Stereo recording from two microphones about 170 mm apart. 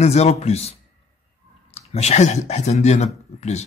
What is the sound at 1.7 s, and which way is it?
Speech, 40° left (ahead or behind).